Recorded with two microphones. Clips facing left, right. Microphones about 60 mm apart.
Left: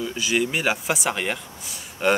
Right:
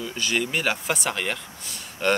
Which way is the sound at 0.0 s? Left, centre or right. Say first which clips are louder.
Left 3 dB; centre.